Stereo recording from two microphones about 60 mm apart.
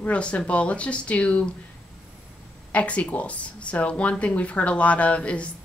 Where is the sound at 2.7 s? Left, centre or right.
Left.